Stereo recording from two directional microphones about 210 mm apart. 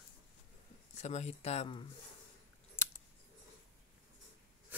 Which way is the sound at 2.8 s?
10° left (ahead or behind).